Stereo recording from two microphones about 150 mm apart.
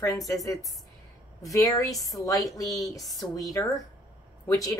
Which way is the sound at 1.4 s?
20° left (ahead or behind).